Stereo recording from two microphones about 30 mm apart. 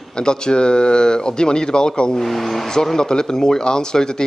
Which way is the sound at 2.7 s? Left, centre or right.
Centre.